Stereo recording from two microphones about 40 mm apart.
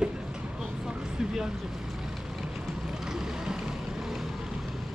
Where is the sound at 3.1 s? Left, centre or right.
Centre.